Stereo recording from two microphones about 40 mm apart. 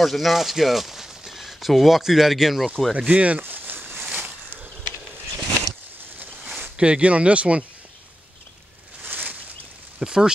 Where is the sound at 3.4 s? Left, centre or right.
Right.